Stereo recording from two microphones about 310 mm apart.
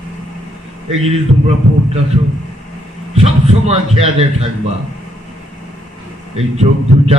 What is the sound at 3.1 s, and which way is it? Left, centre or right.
A man's voice, centre.